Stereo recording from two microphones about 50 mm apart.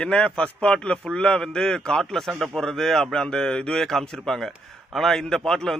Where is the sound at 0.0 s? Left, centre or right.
Centre.